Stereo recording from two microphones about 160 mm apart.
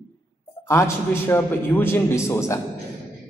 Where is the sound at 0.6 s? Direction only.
15° left (ahead or behind).